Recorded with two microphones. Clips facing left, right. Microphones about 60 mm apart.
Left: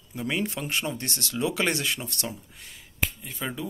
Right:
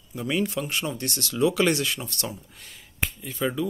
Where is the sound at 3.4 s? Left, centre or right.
Centre.